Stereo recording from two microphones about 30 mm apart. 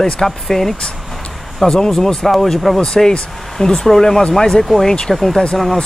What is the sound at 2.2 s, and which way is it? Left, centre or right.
Speech, centre.